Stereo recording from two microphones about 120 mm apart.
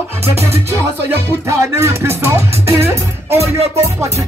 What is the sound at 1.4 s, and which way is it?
Music, 25° right (ahead or behind).